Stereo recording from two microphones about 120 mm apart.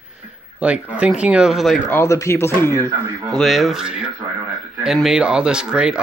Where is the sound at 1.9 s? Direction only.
25° left (ahead or behind).